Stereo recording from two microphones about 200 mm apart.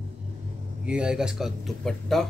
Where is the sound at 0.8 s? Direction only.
5° right (ahead or behind).